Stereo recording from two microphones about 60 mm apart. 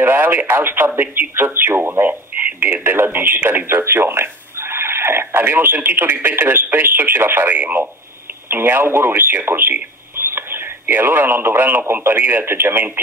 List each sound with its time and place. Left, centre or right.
0.0 s speech: right
1.8 s speech: right